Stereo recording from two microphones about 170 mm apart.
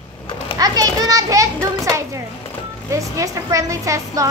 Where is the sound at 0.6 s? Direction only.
20° right (ahead or behind).